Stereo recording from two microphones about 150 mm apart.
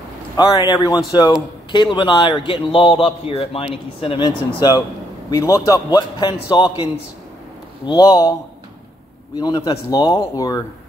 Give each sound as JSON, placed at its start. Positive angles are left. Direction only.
{"t": 0.7, "sound": "a man's voice", "side_deg": 25}
{"t": 9.4, "sound": "a man's voice", "side_deg": 30}